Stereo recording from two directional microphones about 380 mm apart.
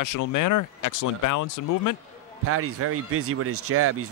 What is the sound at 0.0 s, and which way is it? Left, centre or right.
Speech, left.